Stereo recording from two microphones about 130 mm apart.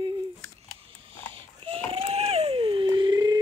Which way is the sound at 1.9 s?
50° right (ahead or behind).